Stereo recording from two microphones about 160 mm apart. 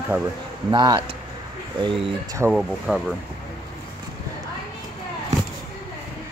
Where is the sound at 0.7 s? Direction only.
25° right (ahead or behind).